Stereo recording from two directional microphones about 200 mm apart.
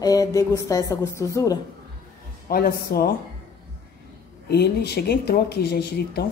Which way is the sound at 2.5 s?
50° left (ahead or behind).